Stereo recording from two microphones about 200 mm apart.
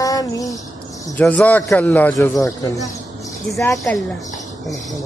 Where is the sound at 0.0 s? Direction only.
15° left (ahead or behind).